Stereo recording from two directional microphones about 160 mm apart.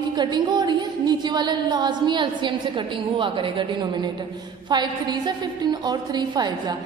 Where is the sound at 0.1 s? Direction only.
25° right (ahead or behind).